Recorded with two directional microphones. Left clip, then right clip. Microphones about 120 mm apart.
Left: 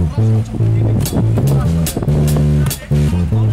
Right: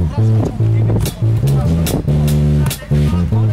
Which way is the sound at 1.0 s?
10° left (ahead or behind).